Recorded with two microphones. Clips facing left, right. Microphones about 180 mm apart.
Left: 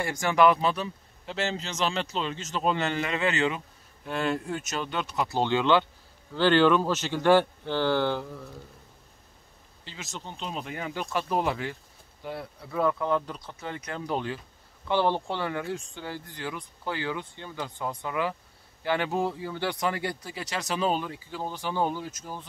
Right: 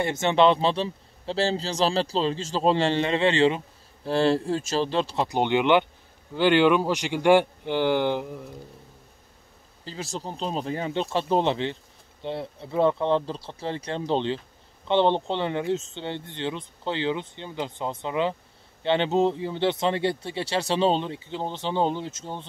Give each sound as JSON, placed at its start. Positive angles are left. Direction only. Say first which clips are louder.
{"t": 0.0, "sound": "a man's voice", "louder": "right 2 dB", "side_deg": -25}
{"t": 5.3, "sound": "speech", "louder": "right 2 dB", "side_deg": -20}
{"t": 9.8, "sound": "a man's voice", "louder": "right 7 dB", "side_deg": -35}